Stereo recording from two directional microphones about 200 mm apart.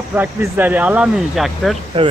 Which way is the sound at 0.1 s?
10° right (ahead or behind).